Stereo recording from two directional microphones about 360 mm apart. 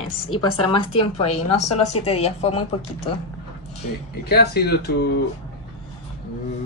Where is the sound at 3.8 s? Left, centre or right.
Left.